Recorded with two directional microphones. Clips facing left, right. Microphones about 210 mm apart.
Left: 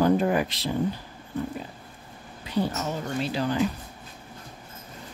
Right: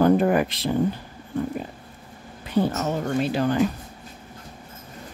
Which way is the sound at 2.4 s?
50° right (ahead or behind).